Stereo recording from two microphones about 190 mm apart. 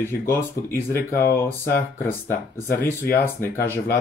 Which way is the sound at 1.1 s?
50° left (ahead or behind).